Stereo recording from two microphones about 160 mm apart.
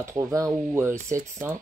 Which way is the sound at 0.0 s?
20° right (ahead or behind).